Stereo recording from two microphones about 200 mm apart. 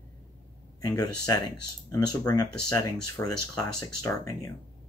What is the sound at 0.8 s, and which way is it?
Speech, 20° left (ahead or behind).